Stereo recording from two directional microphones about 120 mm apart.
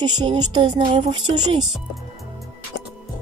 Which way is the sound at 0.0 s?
40° right (ahead or behind).